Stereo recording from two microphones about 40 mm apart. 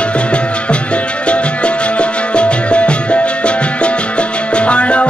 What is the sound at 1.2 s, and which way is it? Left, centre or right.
Music, left.